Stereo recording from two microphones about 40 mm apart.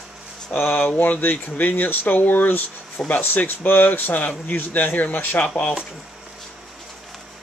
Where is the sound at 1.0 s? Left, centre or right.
Left.